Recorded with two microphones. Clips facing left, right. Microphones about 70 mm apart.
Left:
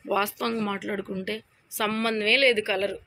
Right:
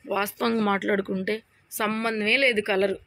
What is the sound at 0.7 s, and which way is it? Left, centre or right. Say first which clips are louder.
Speech: right 6 dB; right.